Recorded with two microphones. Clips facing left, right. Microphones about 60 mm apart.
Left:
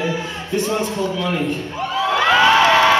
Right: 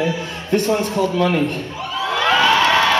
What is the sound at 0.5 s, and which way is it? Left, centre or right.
Speech, right.